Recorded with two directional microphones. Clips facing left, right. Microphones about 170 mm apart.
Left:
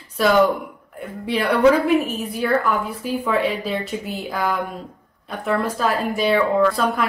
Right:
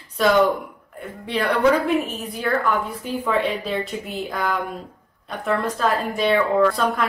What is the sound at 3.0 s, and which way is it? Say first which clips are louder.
Speech: left 2 dB; 5° left (ahead or behind).